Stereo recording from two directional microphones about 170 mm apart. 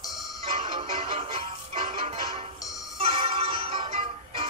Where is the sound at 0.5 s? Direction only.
35° right (ahead or behind).